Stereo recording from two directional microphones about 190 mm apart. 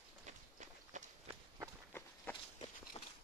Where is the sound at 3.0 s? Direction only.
30° left (ahead or behind).